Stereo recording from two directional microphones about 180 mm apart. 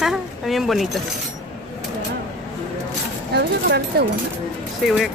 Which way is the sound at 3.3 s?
65° right (ahead or behind).